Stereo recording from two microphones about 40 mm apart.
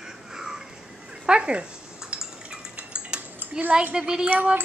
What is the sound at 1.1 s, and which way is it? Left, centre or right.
Drip, right.